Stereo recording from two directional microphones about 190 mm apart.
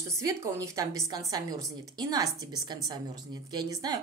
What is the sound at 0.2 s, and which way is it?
A woman's voice, 15° right (ahead or behind).